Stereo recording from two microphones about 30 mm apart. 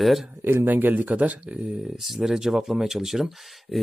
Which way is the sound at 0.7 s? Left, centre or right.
Right.